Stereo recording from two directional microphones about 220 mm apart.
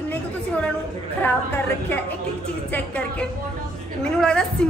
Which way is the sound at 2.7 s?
5° left (ahead or behind).